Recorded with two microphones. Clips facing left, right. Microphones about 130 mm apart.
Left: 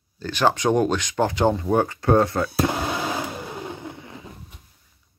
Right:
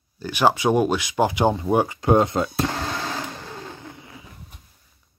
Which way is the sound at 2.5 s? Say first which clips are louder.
Left 2 dB; 10° left (ahead or behind).